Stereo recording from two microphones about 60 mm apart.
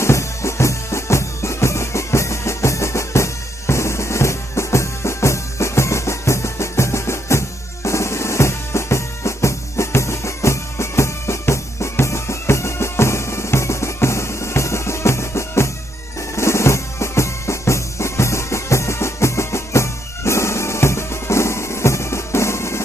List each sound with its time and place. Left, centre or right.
0.0 s music: left
16.3 s drum: left